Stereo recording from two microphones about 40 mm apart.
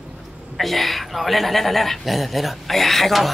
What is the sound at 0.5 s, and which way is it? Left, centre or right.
A woman's voice, centre.